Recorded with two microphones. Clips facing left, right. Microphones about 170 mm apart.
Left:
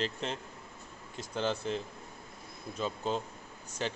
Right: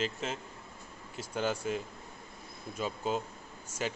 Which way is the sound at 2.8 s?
5° right (ahead or behind).